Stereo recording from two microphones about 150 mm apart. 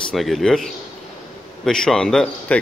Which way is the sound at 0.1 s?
Centre (ahead or behind).